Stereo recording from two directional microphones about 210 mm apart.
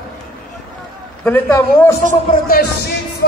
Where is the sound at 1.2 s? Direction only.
10° left (ahead or behind).